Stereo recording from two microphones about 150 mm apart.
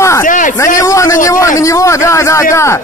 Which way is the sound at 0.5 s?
20° left (ahead or behind).